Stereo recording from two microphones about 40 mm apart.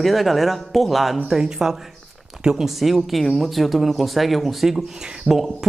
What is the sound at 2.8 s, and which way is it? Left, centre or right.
Speech, centre.